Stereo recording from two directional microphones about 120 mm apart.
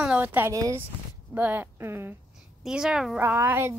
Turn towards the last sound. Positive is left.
turn(degrees=-20)  # may be behind; listen again after turning